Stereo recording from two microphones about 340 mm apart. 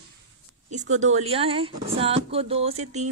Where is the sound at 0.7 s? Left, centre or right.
Right.